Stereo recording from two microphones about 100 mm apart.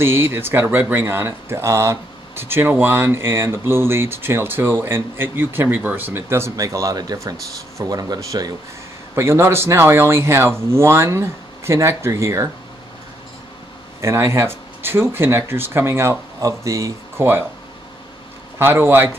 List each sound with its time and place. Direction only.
0.0 s speech: 25° right (ahead or behind)
9.1 s speech: 25° right (ahead or behind)
14.0 s speech: 25° right (ahead or behind)
18.6 s speech: 25° right (ahead or behind)